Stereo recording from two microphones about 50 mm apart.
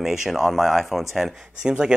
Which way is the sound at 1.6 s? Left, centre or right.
Centre.